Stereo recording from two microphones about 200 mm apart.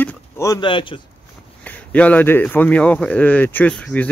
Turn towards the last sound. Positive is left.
turn(degrees=5)  # may be behind; listen again after turning